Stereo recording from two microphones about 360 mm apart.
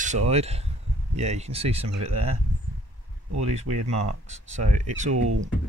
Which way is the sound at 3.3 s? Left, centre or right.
Centre.